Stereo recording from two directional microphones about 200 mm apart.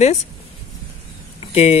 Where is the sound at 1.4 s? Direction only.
30° left (ahead or behind).